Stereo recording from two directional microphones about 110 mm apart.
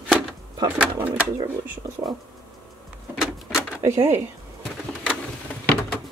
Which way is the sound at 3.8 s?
25° right (ahead or behind).